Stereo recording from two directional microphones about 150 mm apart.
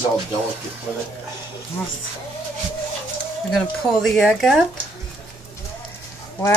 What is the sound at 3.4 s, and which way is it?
A woman's voice, centre (ahead or behind).